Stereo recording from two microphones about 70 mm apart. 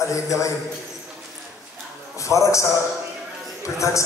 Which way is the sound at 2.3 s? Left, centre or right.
Left.